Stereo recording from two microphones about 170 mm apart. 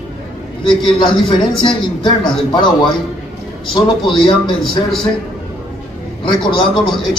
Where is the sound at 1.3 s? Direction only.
25° left (ahead or behind).